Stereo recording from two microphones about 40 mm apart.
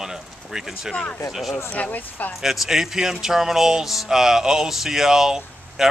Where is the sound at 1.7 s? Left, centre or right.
Left.